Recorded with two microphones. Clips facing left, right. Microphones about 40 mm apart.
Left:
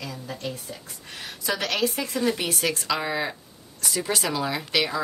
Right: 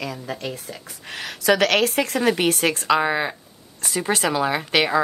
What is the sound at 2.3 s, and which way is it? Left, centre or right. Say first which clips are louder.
A woman's voice: right 6 dB; right.